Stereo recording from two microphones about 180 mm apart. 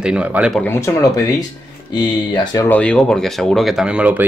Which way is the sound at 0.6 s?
15° left (ahead or behind).